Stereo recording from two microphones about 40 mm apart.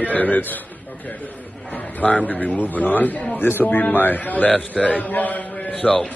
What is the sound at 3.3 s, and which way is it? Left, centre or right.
Speech, left.